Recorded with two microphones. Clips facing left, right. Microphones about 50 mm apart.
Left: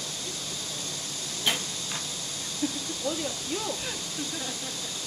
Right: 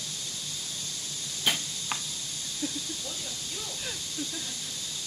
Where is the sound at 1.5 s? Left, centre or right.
Centre.